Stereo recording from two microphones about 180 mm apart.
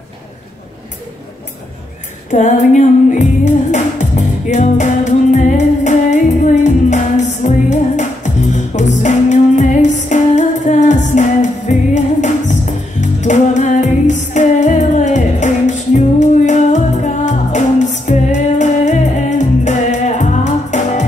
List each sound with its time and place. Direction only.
2.3 s music: 40° left (ahead or behind)